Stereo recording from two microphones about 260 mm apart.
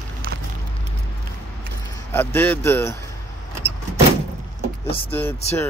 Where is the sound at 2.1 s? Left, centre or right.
Centre.